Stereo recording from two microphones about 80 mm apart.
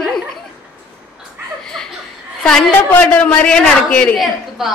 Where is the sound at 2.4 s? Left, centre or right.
Centre.